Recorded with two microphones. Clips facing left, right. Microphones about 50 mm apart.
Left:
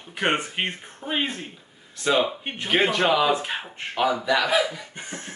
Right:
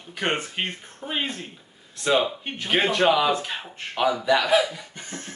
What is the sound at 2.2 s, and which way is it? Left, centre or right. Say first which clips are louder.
Speech: left 1 dB; centre.